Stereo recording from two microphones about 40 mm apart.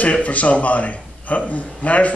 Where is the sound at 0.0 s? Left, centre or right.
Left.